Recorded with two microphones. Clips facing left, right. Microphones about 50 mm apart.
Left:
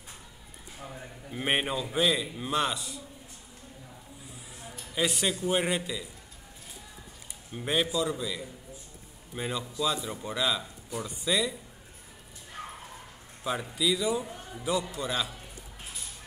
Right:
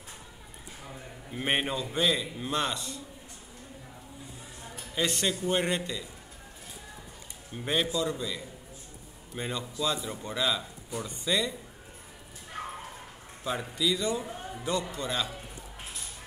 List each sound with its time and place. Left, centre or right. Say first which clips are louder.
0.8 s a man's voice: left 2 dB; centre
4.9 s speech: left 1 dB; centre
7.5 s speech: left 1 dB; centre
13.4 s speech: left 1 dB; centre
14.2 s music: right 3 dB; right
14.6 s speech: left 2 dB; centre